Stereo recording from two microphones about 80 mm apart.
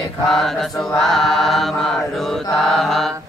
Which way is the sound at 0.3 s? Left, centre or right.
Centre.